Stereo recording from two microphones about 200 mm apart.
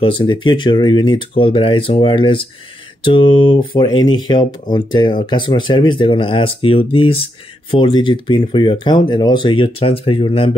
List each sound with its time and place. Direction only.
0.0 s speech: 25° left (ahead or behind)